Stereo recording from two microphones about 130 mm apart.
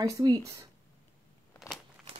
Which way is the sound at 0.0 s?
30° right (ahead or behind).